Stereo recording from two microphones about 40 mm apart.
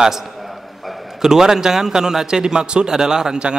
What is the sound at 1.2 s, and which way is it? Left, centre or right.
A man's voice, centre.